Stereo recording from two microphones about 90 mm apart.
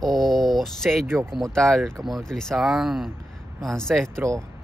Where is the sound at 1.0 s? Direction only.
25° right (ahead or behind).